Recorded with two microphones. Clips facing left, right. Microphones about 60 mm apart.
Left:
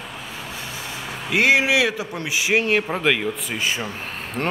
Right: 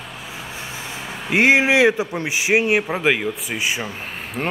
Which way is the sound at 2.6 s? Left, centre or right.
Centre.